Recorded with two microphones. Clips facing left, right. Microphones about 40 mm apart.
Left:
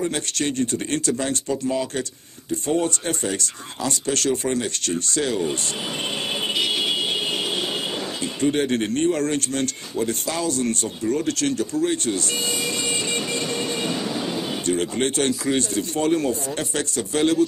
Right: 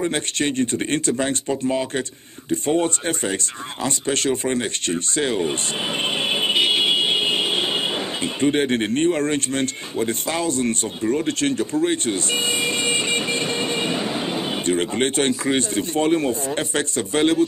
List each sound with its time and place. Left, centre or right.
0.0 s speech: right
6.0 s vehicle: right
8.4 s speech: right